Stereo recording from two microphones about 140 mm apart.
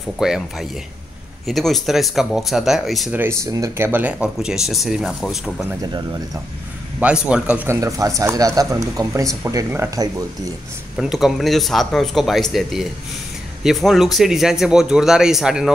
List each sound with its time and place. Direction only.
0.2 s speech: 5° right (ahead or behind)
3.2 s speech: 20° right (ahead or behind); by 5.7 s centre (ahead or behind)
5.8 s speech: 25° right (ahead or behind)
7.0 s speech: 10° right (ahead or behind)
11.0 s speech: 5° right (ahead or behind)